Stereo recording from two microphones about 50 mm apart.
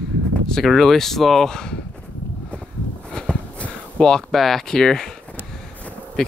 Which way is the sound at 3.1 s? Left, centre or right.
Centre.